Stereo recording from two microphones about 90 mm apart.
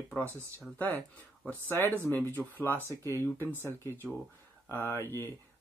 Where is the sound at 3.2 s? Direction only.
25° left (ahead or behind).